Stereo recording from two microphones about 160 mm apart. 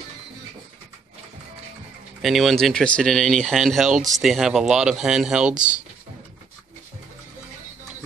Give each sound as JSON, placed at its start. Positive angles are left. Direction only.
{"t": 2.2, "sound": "speech", "side_deg": 0}
{"t": 5.5, "sound": "speech", "side_deg": -50}